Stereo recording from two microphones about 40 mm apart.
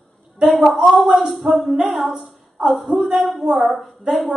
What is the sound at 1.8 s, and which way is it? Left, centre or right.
A woman's voice, centre.